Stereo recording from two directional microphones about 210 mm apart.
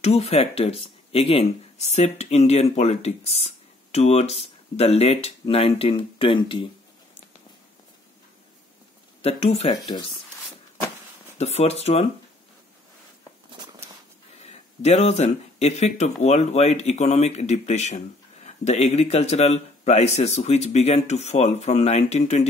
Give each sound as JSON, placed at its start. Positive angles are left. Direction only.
{"t": 0.0, "sound": "speech", "side_deg": 30}
{"t": 9.2, "sound": "speech", "side_deg": 30}
{"t": 11.3, "sound": "speech", "side_deg": 30}
{"t": 14.4, "sound": "speech", "side_deg": 30}